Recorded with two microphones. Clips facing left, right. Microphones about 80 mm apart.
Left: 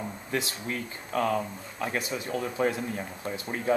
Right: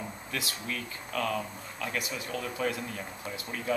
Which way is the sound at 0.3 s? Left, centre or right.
Left.